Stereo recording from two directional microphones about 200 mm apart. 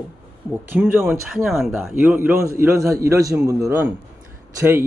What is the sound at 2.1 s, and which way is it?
Speech, 10° right (ahead or behind).